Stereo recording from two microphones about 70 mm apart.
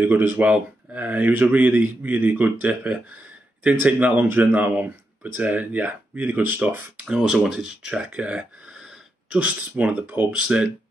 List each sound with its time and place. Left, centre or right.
0.0 s speech: right
7.1 s speech: centre
8.7 s sniff: centre
9.3 s speech: centre